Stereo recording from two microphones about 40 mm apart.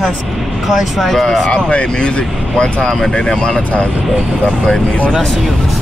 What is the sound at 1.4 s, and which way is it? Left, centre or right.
Speech, left.